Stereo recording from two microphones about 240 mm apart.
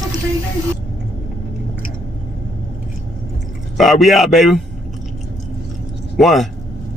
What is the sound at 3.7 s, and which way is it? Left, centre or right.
Speech, centre.